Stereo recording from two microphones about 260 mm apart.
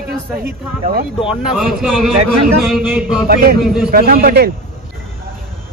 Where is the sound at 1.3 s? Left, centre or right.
Centre.